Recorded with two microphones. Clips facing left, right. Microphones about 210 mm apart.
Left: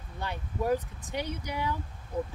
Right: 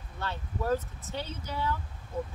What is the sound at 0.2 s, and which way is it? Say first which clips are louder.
Speech: left 2 dB; 15° left (ahead or behind).